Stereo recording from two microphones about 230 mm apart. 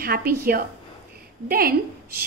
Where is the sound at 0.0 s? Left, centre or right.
Right.